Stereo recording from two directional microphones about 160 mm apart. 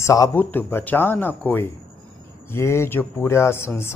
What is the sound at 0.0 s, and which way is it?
A man's voice, 20° left (ahead or behind).